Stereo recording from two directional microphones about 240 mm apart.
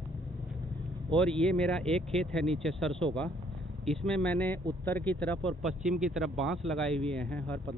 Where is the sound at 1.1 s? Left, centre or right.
Centre.